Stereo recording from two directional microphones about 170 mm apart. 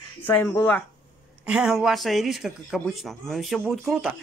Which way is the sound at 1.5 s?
5° right (ahead or behind).